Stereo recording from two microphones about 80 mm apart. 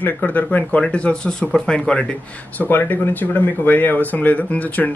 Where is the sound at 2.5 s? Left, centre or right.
Left.